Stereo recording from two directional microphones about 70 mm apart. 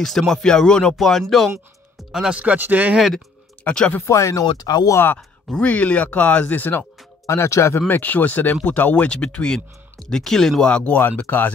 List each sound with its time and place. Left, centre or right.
0.0 s speech: centre
2.1 s speech: centre
3.6 s speech: centre
4.0 s speech: left
4.6 s speech: left
5.6 s speech: left
7.2 s speech: left
7.9 s speech: left